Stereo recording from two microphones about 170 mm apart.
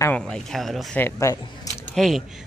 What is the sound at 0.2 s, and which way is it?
Speech, centre (ahead or behind).